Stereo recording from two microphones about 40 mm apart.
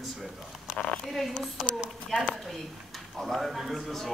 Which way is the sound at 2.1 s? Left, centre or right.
Centre.